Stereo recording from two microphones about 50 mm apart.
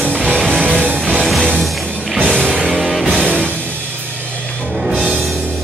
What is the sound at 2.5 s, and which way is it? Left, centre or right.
Music, right.